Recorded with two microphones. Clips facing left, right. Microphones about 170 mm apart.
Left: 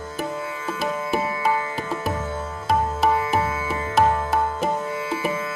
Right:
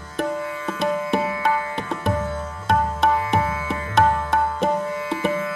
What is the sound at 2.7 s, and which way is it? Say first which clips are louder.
Music: right 1 dB; 5° left (ahead or behind).